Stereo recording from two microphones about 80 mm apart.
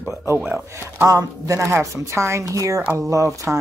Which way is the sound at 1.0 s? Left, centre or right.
Right.